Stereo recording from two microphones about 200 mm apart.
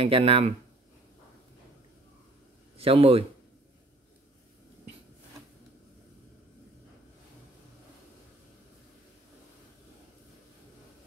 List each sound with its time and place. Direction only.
0.0 s speech: 30° right (ahead or behind)
2.8 s speech: 30° right (ahead or behind)